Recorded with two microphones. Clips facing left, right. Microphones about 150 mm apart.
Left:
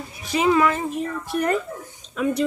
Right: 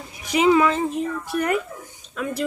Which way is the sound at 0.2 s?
15° right (ahead or behind).